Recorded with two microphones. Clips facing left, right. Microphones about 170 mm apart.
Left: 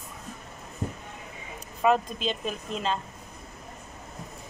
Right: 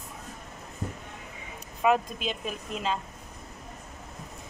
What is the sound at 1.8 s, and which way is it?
Speech, 5° right (ahead or behind).